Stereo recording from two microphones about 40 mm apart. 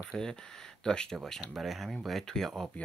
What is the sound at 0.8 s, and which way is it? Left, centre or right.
Speech, centre.